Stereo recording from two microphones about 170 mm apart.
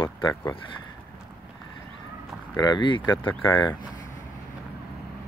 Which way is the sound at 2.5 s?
25° left (ahead or behind).